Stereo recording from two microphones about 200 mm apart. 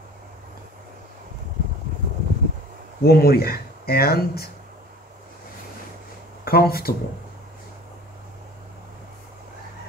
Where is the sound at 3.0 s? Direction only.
50° left (ahead or behind).